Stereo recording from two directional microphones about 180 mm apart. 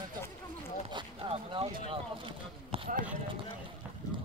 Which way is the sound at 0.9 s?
30° right (ahead or behind).